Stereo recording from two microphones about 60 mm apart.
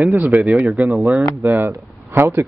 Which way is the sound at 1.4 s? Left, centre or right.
Right.